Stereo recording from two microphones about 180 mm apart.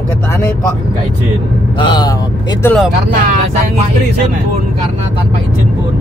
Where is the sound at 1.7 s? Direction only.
25° left (ahead or behind).